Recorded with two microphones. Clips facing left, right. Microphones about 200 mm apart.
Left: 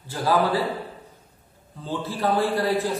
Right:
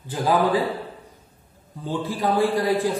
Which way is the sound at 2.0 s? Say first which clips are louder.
Right 1 dB; 15° right (ahead or behind).